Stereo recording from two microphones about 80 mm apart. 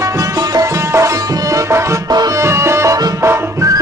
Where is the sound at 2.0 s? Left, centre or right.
Right.